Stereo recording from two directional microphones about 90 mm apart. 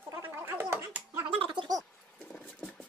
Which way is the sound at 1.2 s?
70° right (ahead or behind).